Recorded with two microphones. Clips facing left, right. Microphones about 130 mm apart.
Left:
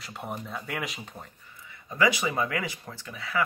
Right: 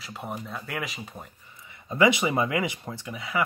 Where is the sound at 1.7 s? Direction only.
20° right (ahead or behind).